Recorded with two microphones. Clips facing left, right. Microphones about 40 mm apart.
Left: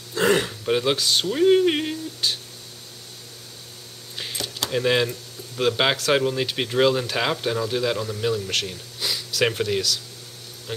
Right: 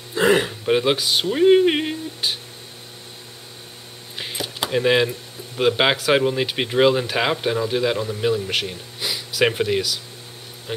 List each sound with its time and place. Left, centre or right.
0.1 s speech: centre
4.2 s keys jangling: centre
5.6 s speech: centre